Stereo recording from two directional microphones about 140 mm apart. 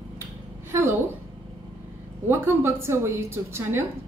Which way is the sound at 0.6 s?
20° right (ahead or behind).